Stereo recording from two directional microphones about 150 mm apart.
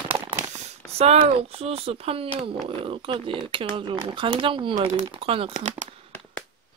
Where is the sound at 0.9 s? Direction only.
40° right (ahead or behind).